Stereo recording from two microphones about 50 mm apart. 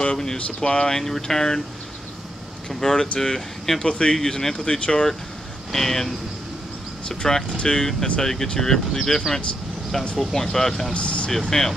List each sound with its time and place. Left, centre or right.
0.0 s speech: centre
2.7 s speech: centre
5.7 s speech: centre
10.9 s speech: left
11.5 s speech: centre